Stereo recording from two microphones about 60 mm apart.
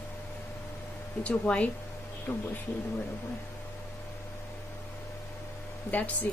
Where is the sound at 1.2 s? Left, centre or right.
Centre.